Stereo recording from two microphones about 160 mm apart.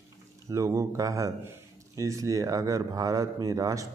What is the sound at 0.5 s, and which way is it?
Speech, 20° right (ahead or behind).